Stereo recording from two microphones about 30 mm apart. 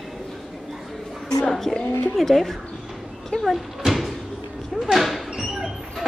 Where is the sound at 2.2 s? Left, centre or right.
Centre.